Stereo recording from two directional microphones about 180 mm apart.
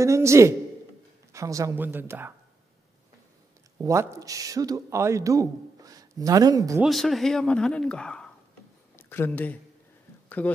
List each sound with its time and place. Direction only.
0.0 s a woman's voice: 15° right (ahead or behind)
3.7 s speech: 15° right (ahead or behind)
6.8 s speech: centre (ahead or behind)